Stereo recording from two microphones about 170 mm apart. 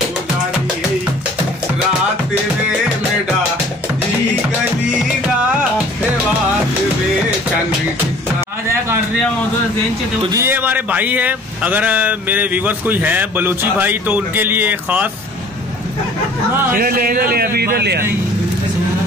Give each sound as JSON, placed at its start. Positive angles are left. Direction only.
{"t": 10.2, "sound": "speech", "side_deg": -15}
{"t": 16.7, "sound": "a man's voice", "side_deg": -60}